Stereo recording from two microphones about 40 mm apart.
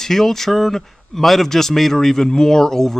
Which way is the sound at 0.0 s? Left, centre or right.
Centre.